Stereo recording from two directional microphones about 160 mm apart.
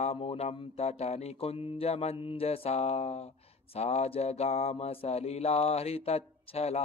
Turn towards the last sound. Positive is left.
turn(degrees=40)  # may be behind; listen again after turning